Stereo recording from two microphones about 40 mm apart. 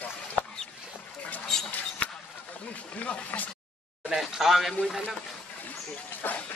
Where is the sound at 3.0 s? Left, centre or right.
Left.